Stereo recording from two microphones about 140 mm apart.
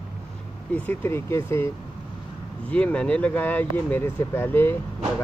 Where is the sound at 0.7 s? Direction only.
15° left (ahead or behind).